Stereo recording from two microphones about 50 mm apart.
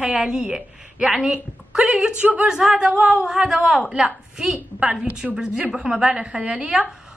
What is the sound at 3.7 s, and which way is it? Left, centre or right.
A woman's voice, right.